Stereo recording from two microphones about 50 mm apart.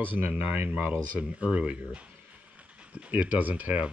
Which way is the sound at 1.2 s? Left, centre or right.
Right.